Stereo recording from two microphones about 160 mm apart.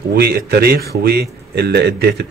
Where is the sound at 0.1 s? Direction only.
80° right.